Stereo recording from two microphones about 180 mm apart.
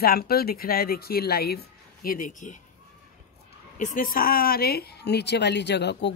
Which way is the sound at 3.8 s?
45° left (ahead or behind).